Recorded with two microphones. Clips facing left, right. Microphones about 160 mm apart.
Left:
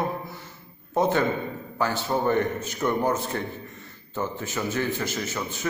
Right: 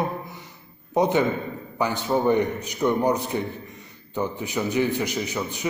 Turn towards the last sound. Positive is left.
turn(degrees=-15)  # may be behind; listen again after turning